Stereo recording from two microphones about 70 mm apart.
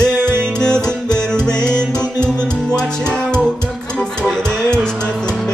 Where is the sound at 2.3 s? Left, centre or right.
Centre.